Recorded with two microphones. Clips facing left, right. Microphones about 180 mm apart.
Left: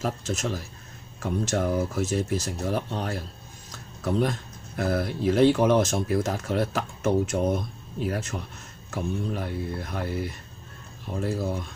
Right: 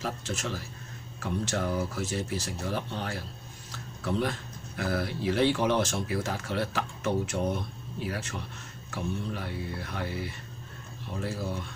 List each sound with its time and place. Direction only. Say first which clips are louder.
0.0 s speech: left 5 dB; 45° left (ahead or behind)